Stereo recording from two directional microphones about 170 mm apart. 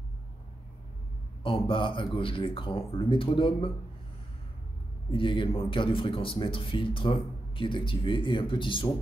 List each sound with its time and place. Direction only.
1.4 s speech: 30° left (ahead or behind)
5.1 s speech: 30° left (ahead or behind)